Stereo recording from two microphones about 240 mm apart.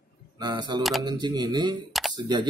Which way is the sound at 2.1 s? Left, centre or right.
Centre.